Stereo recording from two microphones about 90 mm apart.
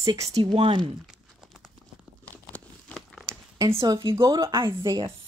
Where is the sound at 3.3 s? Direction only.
35° right (ahead or behind).